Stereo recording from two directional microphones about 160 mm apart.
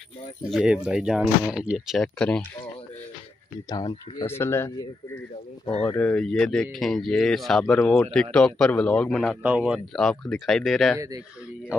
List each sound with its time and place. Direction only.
0.4 s speech: 5° right (ahead or behind)
3.8 s speech: 40° left (ahead or behind)
4.3 s speech: 15° left (ahead or behind)
5.9 s speech: 10° left (ahead or behind)
9.4 s speech: 10° right (ahead or behind)
9.9 s speech: 5° left (ahead or behind)